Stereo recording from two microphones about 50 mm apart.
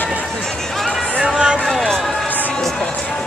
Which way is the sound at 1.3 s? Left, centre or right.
Right.